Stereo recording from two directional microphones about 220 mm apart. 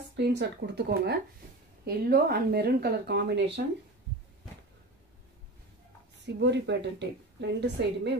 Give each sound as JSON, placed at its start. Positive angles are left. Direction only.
{"t": 0.1, "sound": "a woman's voice", "side_deg": -50}
{"t": 6.2, "sound": "a woman's voice", "side_deg": -50}